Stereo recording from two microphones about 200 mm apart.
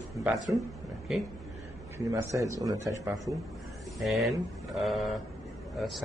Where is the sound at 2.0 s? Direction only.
15° right (ahead or behind).